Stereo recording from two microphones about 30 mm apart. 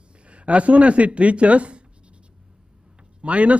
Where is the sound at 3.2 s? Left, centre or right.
Right.